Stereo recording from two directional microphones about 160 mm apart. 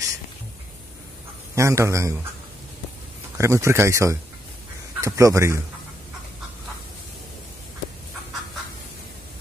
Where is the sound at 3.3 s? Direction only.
15° right (ahead or behind).